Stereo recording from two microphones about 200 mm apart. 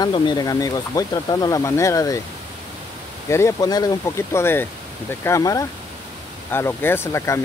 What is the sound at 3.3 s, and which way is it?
Speech, 15° left (ahead or behind).